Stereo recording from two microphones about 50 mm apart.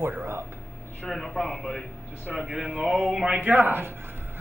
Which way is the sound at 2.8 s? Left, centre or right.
Centre.